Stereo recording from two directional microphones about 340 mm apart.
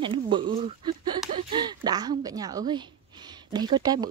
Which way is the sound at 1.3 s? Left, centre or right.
Centre.